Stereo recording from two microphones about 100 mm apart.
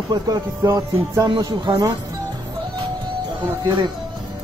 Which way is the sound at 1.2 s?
45° right (ahead or behind).